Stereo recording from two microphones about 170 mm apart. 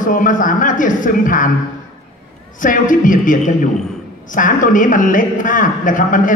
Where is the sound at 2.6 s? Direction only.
50° left (ahead or behind).